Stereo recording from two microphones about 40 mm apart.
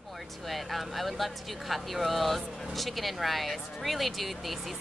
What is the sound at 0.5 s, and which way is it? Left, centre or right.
Speech, centre.